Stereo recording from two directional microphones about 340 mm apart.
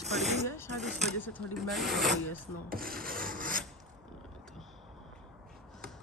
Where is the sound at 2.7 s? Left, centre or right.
Right.